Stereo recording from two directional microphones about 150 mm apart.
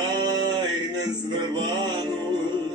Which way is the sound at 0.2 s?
25° right (ahead or behind).